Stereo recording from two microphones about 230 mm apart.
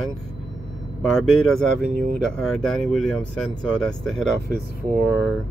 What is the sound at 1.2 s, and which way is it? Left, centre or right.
Speech, centre.